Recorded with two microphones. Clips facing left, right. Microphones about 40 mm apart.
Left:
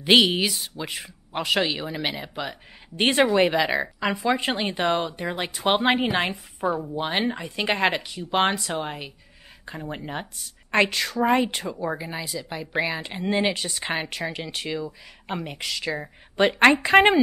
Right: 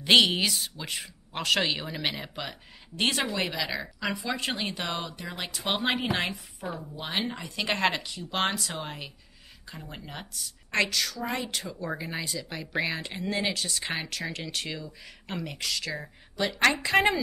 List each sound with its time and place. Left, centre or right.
0.0 s speech: centre
3.0 s speech: left
3.3 s a woman's voice: left
6.7 s speech: left
7.0 s a woman's voice: left
7.3 s a woman's voice: centre; by 11.7 s left
12.0 s speech: centre
13.3 s speech: left; by 14.9 s centre
14.9 s speech: left
16.3 s a woman's voice: left